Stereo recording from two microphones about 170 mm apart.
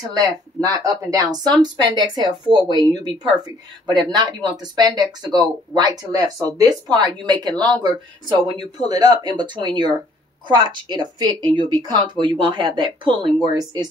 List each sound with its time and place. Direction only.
0.1 s speech: 20° right (ahead or behind)